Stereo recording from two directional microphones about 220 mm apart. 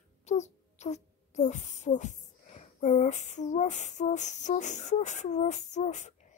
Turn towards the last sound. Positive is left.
turn(degrees=30)  # may be behind; listen again after turning